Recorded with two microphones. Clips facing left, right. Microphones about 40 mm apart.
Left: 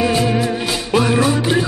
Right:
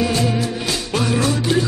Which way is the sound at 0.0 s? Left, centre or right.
Centre.